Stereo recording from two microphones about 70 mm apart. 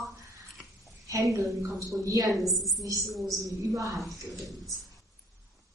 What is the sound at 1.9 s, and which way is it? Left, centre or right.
Speech, right.